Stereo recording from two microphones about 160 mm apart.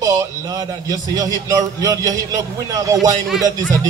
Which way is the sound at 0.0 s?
20° right (ahead or behind).